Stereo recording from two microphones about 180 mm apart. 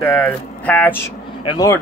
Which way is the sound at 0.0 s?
10° left (ahead or behind).